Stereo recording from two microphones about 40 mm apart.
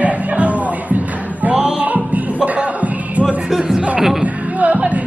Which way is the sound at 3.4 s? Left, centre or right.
Centre.